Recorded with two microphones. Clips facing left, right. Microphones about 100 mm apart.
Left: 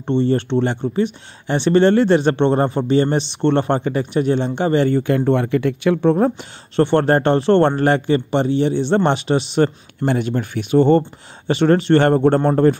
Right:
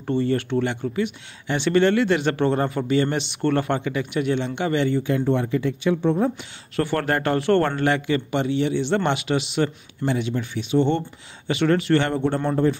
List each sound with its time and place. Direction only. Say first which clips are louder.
0.0 s speech: left 5 dB; 25° left (ahead or behind)
4.9 s speech: left 5 dB; 60° left (ahead or behind)
6.8 s speech: left 8 dB; 30° left (ahead or behind)
10.0 s speech: left 5 dB; 50° left (ahead or behind)